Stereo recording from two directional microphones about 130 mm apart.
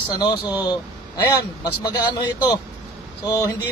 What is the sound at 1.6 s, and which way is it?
Speech, 30° left (ahead or behind).